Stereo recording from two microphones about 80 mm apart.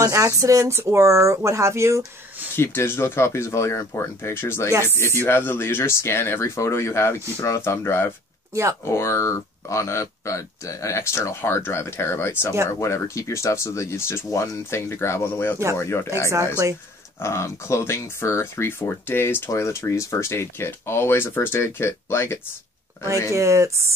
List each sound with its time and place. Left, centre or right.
0.0 s speech: right
2.5 s speech: left
17.2 s speech: left
23.3 s speech: right